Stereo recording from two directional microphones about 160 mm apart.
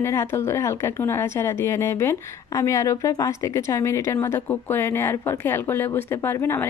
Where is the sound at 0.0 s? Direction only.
15° left (ahead or behind).